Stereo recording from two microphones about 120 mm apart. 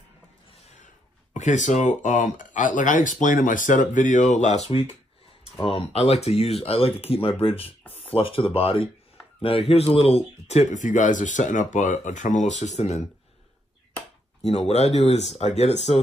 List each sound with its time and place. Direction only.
1.3 s speech: 90° left
5.7 s speech: 55° left (ahead or behind)
14.4 s speech: 60° left (ahead or behind)